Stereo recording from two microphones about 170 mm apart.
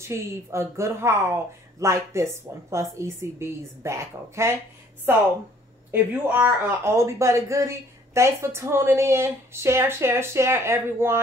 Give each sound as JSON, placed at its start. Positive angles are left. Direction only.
{"t": 0.0, "sound": "speech", "side_deg": -15}
{"t": 5.9, "sound": "speech", "side_deg": -10}